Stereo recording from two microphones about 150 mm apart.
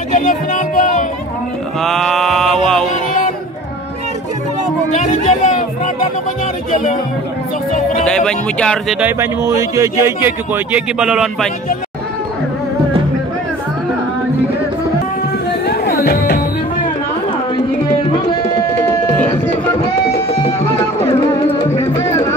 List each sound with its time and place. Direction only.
0.1 s music: 60° left (ahead or behind)
1.8 s mantra: centre (ahead or behind)
4.9 s music: 55° left (ahead or behind)
6.7 s speech: 55° left (ahead or behind)
8.0 s speech: 5° left (ahead or behind)
9.0 s speech: 15° right (ahead or behind)
15.6 s music: 90° left
18.1 s tabla: 30° left (ahead or behind)
18.8 s music: 10° left (ahead or behind)
21.0 s music: 40° left (ahead or behind)
21.7 s music: 20° left (ahead or behind)